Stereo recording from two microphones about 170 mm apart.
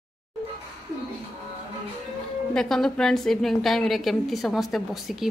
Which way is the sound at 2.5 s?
5° left (ahead or behind).